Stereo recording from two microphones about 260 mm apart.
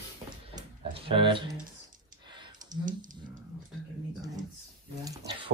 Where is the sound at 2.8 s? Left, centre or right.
Right.